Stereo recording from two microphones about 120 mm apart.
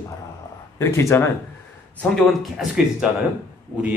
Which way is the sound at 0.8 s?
25° left (ahead or behind).